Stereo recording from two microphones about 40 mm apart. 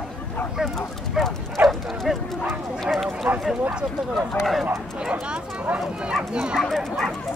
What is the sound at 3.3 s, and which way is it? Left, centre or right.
Clip-clop, right.